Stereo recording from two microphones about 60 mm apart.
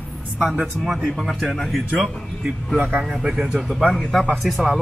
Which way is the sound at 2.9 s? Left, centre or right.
Centre.